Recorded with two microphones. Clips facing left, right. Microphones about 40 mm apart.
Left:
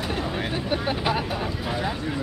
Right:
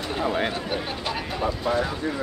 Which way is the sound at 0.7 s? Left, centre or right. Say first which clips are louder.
Left 4 dB; centre.